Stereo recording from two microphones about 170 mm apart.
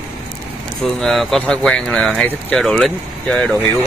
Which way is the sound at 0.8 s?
Centre (ahead or behind).